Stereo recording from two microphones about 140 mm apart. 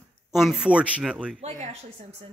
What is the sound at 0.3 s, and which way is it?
A man's voice, centre (ahead or behind).